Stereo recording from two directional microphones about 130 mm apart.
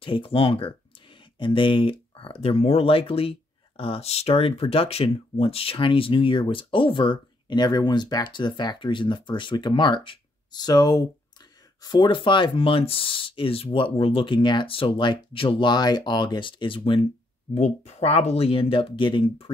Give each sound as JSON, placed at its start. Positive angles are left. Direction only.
{"t": 0.0, "sound": "speech", "side_deg": 40}
{"t": 17.6, "sound": "speech", "side_deg": 60}